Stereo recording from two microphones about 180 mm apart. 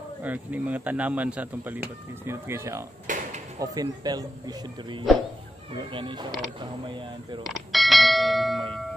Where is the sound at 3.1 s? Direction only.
45° right (ahead or behind).